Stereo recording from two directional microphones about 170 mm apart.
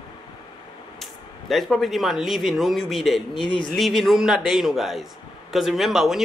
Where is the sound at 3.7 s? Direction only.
Centre (ahead or behind).